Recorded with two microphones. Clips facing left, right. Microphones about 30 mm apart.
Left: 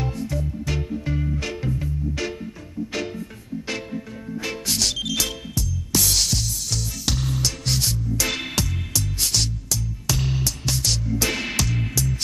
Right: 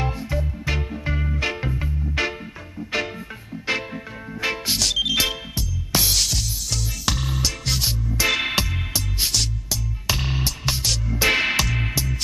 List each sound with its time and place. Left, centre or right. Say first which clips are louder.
0.0 s music: right 1 dB; right
4.7 s music: right 1 dB; centre
5.0 s music: right 4 dB; right
6.1 s music: even; centre
7.8 s music: right 2 dB; right